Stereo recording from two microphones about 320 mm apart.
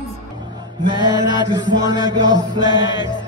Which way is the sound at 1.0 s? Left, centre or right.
Centre.